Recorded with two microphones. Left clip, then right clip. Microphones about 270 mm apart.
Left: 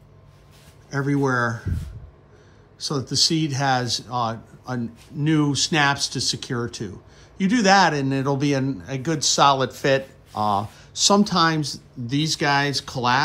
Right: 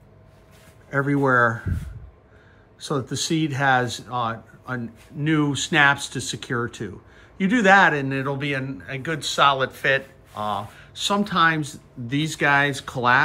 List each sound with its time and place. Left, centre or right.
0.8 s speech: centre
2.9 s a man's voice: centre